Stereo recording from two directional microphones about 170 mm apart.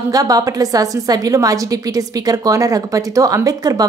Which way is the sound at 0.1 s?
20° right (ahead or behind).